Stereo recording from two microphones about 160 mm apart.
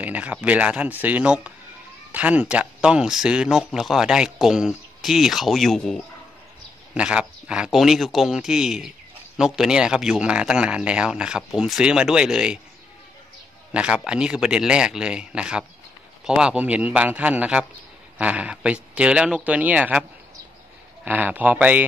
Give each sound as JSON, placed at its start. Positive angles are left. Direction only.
{"t": 0.0, "sound": "speech", "side_deg": -10}
{"t": 13.7, "sound": "speech", "side_deg": -5}